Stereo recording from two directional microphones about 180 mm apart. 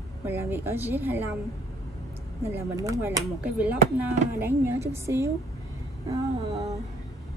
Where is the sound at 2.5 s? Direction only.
15° right (ahead or behind).